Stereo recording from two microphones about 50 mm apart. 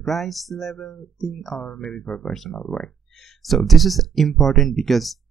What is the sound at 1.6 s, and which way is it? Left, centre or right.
Speech, left.